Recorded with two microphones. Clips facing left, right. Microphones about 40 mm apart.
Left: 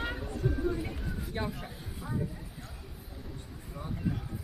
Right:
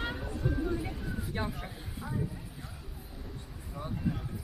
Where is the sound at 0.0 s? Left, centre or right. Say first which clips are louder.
Left 1 dB; centre.